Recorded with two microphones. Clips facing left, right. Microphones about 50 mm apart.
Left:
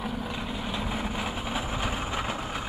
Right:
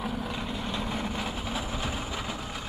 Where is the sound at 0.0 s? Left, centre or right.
Centre.